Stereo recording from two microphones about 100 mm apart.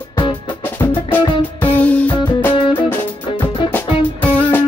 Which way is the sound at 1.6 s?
15° left (ahead or behind).